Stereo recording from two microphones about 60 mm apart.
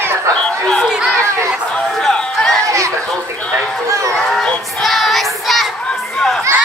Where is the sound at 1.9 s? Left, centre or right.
Centre.